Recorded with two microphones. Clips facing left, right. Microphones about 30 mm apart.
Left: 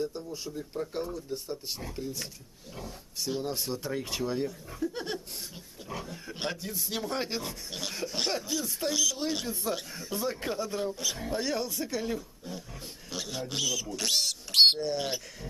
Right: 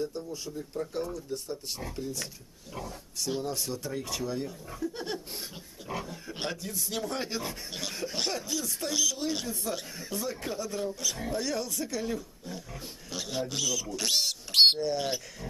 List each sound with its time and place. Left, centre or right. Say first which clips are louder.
0.0 s speech: even; centre
3.4 s speech: left 1 dB; centre
4.5 s speech: left 1 dB; centre
5.9 s speech: right 3 dB; centre
6.4 s speech: even; centre
7.4 s speech: right 1 dB; centre
10.3 s speech: left 2 dB; centre